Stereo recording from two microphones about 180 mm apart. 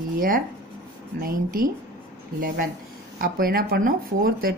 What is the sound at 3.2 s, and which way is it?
Speech, 55° right (ahead or behind).